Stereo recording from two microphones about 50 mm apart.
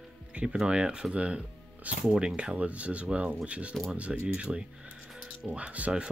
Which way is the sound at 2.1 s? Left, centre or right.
Centre.